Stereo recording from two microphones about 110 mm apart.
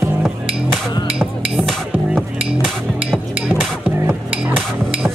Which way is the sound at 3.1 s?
10° right (ahead or behind).